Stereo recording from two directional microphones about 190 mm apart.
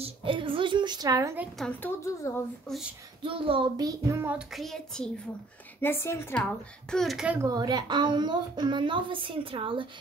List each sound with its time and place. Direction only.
0.0 s a woman's voice: 25° right (ahead or behind)
1.6 s a woman's voice: 10° left (ahead or behind)
3.3 s a child's voice: 30° right (ahead or behind); by 7.3 s centre (ahead or behind)
7.3 s a woman's voice: 20° right (ahead or behind)